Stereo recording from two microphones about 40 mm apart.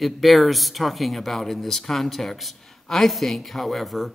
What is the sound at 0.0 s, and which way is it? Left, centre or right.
Speech, centre.